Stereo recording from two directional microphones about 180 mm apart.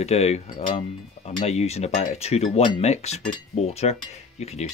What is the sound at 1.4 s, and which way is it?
Speech, 35° left (ahead or behind).